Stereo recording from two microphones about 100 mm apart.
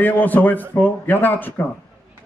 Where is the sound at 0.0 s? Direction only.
20° left (ahead or behind).